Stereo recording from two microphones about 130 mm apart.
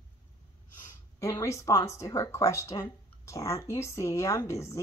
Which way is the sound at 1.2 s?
25° left (ahead or behind).